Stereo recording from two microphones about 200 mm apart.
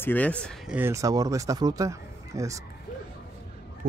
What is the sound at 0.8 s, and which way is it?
Speech, 15° right (ahead or behind).